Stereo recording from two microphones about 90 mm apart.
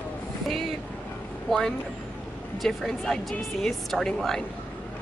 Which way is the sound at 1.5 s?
5° left (ahead or behind).